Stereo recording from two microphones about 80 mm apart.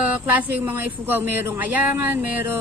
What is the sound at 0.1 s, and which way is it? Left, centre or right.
Speech, right.